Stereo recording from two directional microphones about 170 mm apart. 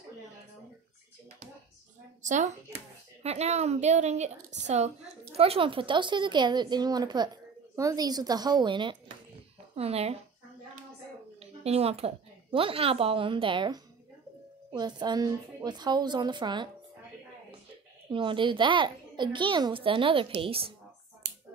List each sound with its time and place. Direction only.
2.2 s a child's voice: 45° right (ahead or behind)
11.3 s a child's voice: 35° right (ahead or behind)
18.1 s a child's voice: 30° right (ahead or behind)